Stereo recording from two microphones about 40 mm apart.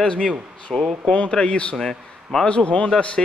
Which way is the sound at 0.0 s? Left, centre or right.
Left.